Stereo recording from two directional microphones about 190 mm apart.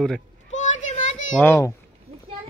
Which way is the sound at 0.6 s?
40° left (ahead or behind).